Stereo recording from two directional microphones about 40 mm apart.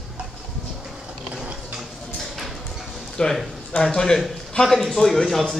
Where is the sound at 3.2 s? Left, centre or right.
Centre.